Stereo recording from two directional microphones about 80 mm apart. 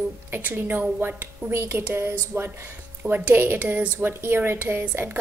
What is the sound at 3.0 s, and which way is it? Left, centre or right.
A woman's voice, centre.